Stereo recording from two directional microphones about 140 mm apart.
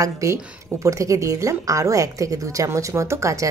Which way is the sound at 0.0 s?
25° right (ahead or behind).